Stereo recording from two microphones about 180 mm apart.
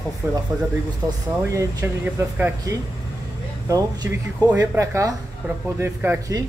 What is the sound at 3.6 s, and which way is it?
Speech, 20° right (ahead or behind).